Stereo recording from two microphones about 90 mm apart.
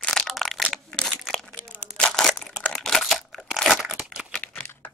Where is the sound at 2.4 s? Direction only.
10° left (ahead or behind).